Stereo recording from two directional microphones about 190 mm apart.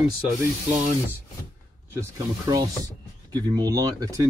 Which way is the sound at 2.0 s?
20° right (ahead or behind).